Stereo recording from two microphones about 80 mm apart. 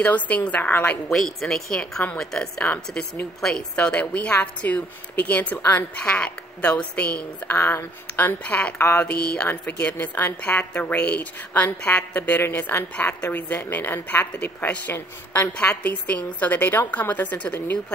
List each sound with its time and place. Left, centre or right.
0.0 s a woman's voice: centre
1.1 s a woman's voice: centre
7.5 s a woman's voice: left
8.7 s a woman's voice: left
15.5 s a woman's voice: centre